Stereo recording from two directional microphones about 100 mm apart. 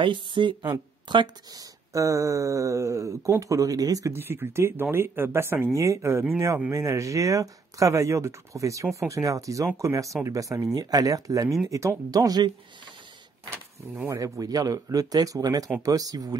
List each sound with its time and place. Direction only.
0.0 s speech: 55° right (ahead or behind)
14.1 s speech: 35° right (ahead or behind)